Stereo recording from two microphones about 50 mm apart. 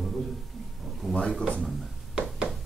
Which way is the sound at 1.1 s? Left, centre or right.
Centre.